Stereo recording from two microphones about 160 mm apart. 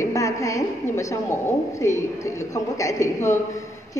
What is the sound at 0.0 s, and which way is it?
A woman's voice, 20° left (ahead or behind).